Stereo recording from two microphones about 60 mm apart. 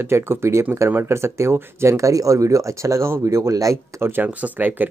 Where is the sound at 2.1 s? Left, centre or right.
Right.